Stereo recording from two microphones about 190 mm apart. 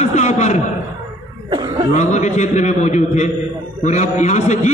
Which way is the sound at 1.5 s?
25° right (ahead or behind).